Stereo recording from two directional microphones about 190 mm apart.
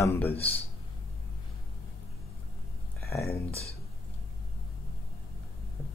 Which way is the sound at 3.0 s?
15° left (ahead or behind).